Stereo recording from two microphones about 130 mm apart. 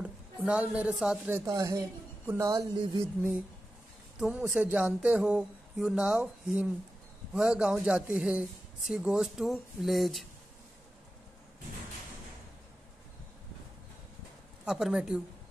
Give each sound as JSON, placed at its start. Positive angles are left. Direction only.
{"t": 0.0, "sound": "a woman's voice", "side_deg": -10}
{"t": 1.5, "sound": "a woman's voice", "side_deg": -25}
{"t": 4.2, "sound": "speech", "side_deg": -5}
{"t": 14.6, "sound": "speech", "side_deg": -5}